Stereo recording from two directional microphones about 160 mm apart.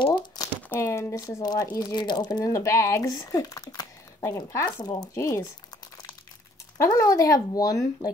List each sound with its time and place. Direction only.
0.0 s crumpling: 30° left (ahead or behind)
0.6 s speech: 15° left (ahead or behind)
6.8 s speech: 20° left (ahead or behind)